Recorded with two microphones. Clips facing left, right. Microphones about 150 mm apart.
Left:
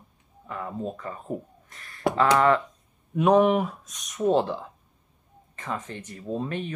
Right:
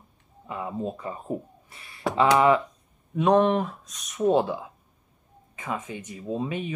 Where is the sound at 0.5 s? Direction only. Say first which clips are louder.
Right 1 dB; 15° right (ahead or behind).